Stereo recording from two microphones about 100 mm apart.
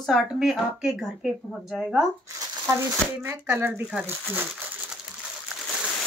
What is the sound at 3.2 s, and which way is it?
Speech, 25° right (ahead or behind).